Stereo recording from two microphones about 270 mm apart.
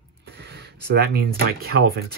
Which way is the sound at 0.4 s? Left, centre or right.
Right.